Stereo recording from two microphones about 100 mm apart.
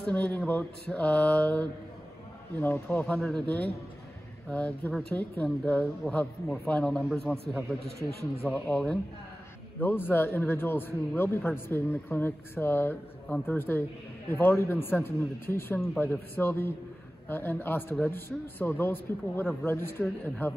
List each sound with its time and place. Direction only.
0.0 s mantra: 15° left (ahead or behind)
2.6 s speech: 20° left (ahead or behind)
3.2 s a man's voice: 5° left (ahead or behind)
4.5 s mantra: 15° left (ahead or behind)
7.3 s speech: 20° left (ahead or behind)
8.4 s mantra: 20° left (ahead or behind)
9.8 s speech: 20° left (ahead or behind)